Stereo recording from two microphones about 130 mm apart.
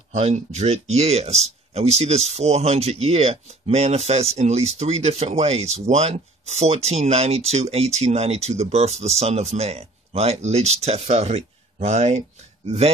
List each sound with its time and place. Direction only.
0.1 s speech: 55° right (ahead or behind)